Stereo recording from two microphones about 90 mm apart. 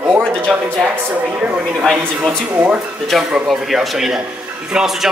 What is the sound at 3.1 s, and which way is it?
Speech, 5° right (ahead or behind).